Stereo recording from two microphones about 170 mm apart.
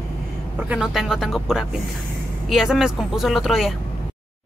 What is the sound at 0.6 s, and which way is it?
Speech, 5° right (ahead or behind).